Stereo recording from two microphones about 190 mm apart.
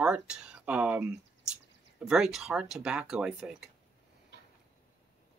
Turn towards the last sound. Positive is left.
turn(degrees=-5)  # may be behind; listen again after turning